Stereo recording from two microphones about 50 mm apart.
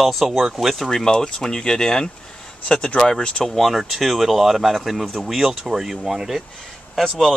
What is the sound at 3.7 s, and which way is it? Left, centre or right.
Speech, centre.